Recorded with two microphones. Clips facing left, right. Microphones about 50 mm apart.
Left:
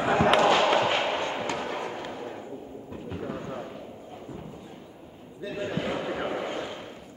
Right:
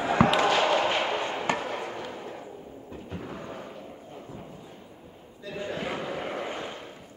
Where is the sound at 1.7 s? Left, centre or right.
Centre.